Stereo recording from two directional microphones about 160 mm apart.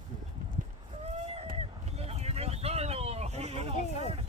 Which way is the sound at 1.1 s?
40° right (ahead or behind).